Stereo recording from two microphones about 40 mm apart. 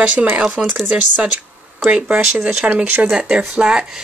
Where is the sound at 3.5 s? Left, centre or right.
Right.